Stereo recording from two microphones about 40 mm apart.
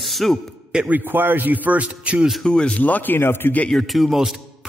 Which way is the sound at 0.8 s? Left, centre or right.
Right.